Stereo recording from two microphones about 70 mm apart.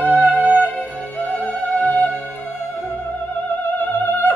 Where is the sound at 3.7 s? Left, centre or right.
Left.